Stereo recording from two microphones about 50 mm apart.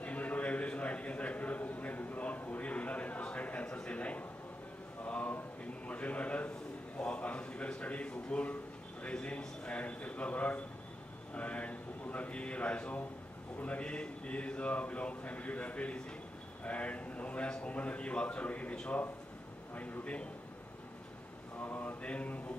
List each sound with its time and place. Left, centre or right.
0.0 s a sound: left
13.6 s a man's voice: left
21.5 s mantra: left